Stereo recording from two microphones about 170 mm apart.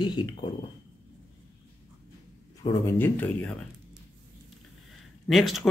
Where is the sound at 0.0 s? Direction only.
25° left (ahead or behind).